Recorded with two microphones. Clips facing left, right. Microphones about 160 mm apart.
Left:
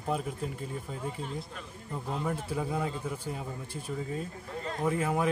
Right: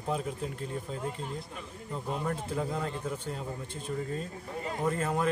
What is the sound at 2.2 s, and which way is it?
A man's voice, 5° left (ahead or behind).